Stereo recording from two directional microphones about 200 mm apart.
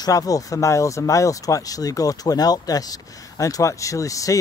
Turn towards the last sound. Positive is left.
turn(degrees=15)  # may be behind; listen again after turning